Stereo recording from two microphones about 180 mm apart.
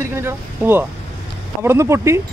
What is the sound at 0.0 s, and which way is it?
Speech, 15° right (ahead or behind).